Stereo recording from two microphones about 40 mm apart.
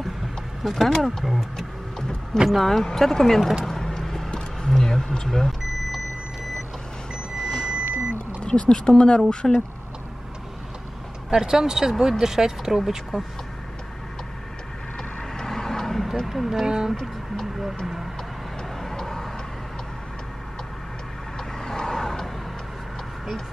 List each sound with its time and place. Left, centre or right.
0.7 s speech: centre
2.5 s speech: centre
3.6 s vehicle: centre
4.6 s speech: centre
7.4 s a sound: left
8.4 s speech: left
11.2 s speech: centre
15.3 s vehicle: centre
16.3 s speech: centre
16.6 s speech: centre
18.6 s vehicle: centre
21.5 s vehicle: centre